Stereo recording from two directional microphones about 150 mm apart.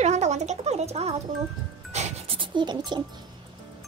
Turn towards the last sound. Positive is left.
turn(degrees=-30)  # may be behind; listen again after turning